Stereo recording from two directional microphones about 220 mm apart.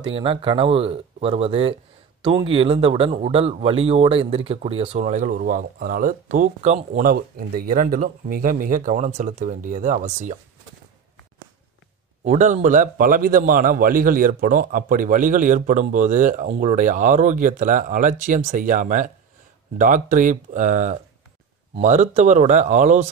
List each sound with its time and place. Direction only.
0.0 s speech: 25° right (ahead or behind)
12.3 s speech: 30° right (ahead or behind)